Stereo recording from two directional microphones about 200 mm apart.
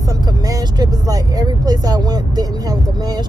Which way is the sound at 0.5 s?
15° right (ahead or behind).